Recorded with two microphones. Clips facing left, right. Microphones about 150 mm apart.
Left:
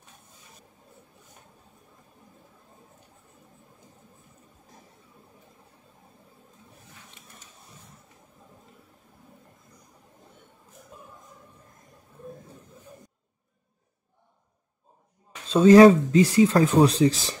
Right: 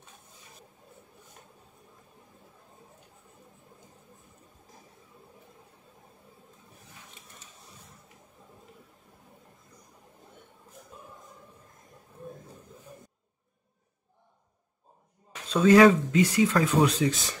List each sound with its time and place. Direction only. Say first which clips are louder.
15.5 s speech: left 5 dB; 30° left (ahead or behind)